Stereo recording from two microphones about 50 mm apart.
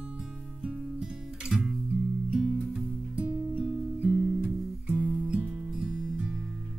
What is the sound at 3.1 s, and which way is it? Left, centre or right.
Music, right.